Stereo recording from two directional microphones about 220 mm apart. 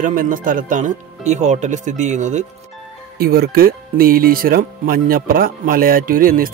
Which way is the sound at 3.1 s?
45° right (ahead or behind).